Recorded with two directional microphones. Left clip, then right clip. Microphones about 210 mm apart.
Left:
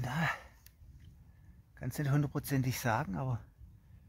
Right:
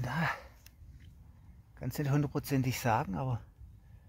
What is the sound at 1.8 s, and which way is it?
Speech, 10° right (ahead or behind).